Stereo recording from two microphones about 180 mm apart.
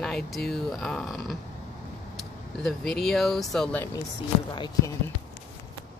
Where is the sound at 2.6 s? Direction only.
5° left (ahead or behind).